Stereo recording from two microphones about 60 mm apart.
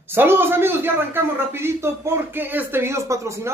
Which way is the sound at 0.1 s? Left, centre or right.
Right.